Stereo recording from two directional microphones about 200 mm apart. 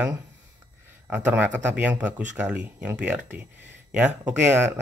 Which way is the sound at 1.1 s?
5° right (ahead or behind).